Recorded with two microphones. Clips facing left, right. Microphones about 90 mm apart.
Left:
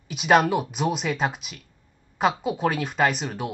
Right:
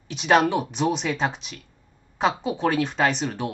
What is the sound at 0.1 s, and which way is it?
Speech, 5° left (ahead or behind).